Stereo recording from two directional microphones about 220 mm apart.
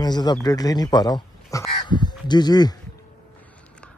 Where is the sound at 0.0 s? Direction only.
20° left (ahead or behind).